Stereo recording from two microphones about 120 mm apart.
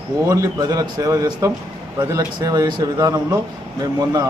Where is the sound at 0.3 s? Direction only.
30° right (ahead or behind).